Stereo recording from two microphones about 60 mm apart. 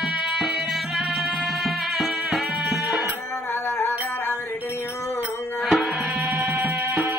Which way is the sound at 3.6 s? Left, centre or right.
Left.